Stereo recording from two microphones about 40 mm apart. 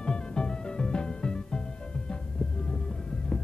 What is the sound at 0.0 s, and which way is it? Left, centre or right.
Music, centre.